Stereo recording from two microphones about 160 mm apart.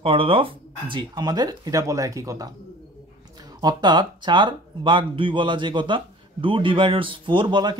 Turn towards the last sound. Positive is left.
turn(degrees=-30)  # may be behind; listen again after turning